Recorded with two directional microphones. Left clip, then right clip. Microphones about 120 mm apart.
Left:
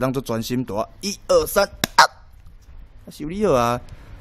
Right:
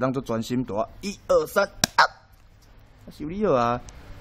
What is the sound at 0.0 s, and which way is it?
Speech, 35° left (ahead or behind).